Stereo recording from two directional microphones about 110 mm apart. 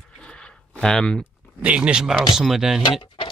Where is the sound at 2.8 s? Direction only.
50° left (ahead or behind).